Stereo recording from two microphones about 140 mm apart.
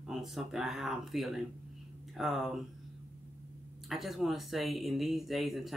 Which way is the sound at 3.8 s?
Centre (ahead or behind).